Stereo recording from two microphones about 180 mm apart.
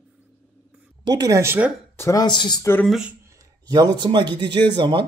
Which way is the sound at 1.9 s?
20° left (ahead or behind).